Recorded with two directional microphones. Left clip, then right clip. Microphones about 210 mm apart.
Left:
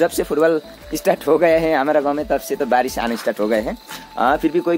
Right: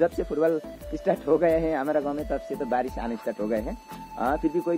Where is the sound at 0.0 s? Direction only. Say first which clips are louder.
Left 7 dB; 15° left (ahead or behind).